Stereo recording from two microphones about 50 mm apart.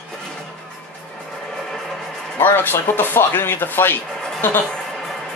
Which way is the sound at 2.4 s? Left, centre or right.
Left.